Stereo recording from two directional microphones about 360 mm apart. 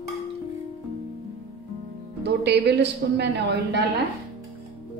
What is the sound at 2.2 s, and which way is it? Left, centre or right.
A woman's voice, right.